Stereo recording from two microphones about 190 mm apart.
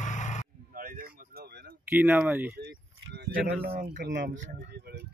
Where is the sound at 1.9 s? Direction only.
10° right (ahead or behind).